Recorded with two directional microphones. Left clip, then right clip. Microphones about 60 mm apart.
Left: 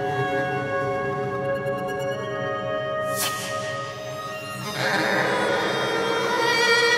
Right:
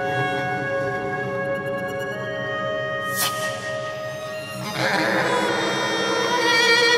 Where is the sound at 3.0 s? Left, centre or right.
Right.